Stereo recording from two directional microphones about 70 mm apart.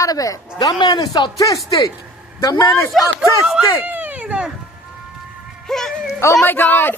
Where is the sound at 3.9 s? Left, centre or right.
Right.